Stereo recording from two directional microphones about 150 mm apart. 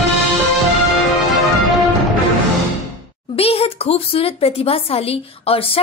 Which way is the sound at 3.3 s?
40° left (ahead or behind).